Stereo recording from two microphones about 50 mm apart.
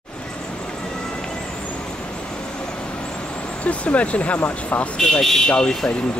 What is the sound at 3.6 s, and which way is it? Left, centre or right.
Speech, left.